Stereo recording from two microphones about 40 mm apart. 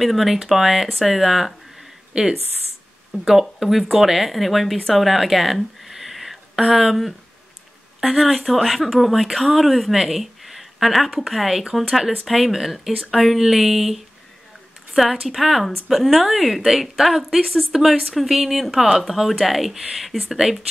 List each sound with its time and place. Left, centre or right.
0.0 s speech: centre
2.1 s speech: centre
3.1 s speech: centre